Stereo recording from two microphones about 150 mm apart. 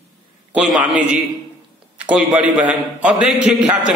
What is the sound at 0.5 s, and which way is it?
A man's voice, 5° right (ahead or behind).